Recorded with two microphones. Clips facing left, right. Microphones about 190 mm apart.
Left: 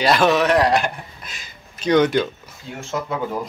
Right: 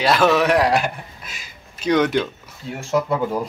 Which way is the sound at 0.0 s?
5° right (ahead or behind).